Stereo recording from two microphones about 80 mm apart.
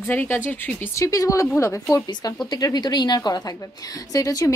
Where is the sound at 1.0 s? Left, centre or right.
Left.